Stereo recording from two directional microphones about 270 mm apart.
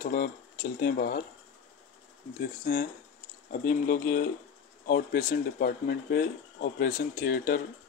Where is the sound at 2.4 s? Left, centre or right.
Left.